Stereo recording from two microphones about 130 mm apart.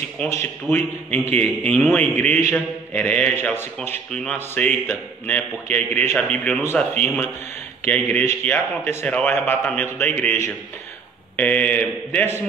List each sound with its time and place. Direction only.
0.3 s a man's voice: 15° left (ahead or behind)
4.1 s a man's voice: 5° left (ahead or behind)
11.3 s a man's voice: 10° left (ahead or behind)